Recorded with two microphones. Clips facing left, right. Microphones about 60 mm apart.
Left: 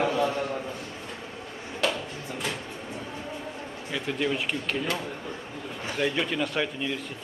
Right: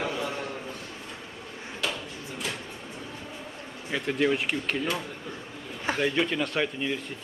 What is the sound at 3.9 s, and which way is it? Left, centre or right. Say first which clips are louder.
Speech: right 3 dB; centre.